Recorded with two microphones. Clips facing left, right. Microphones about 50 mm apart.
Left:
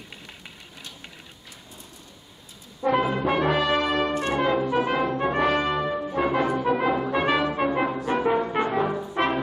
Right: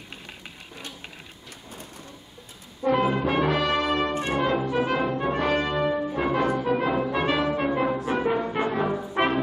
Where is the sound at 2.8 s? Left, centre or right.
Centre.